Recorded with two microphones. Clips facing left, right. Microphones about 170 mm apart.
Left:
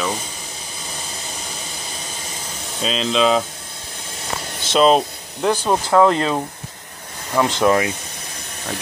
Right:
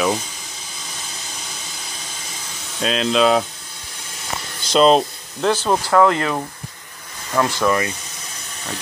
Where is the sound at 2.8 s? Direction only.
Centre (ahead or behind).